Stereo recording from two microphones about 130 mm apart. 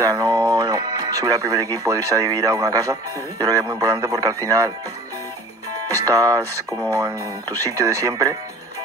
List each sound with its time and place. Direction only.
0.0 s speech: 30° right (ahead or behind)
5.9 s speech: 25° right (ahead or behind)